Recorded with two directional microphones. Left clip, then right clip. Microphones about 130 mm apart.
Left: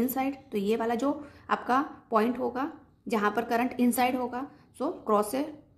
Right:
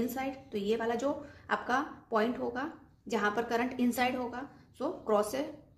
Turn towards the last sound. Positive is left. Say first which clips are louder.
# left 3 dB
turn(degrees=35)  # may be behind; listen again after turning